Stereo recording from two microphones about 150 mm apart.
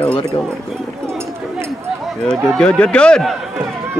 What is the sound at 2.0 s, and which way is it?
Run, centre (ahead or behind).